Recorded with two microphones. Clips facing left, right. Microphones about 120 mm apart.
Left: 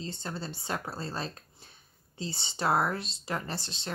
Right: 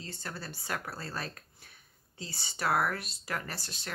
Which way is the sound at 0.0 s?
25° left (ahead or behind).